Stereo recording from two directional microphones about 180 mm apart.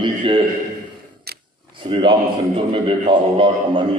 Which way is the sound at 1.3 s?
60° right (ahead or behind).